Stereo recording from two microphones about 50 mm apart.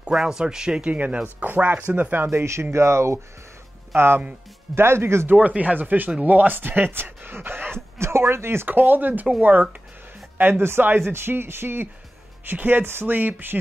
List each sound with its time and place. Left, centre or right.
0.1 s speech: centre; by 2.2 s right
2.2 s speech: right
3.9 s speech: right
5.3 s speech: right
8.6 s speech: right